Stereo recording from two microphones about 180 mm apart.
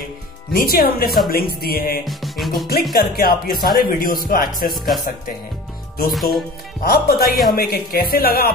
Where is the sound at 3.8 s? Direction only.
55° left (ahead or behind).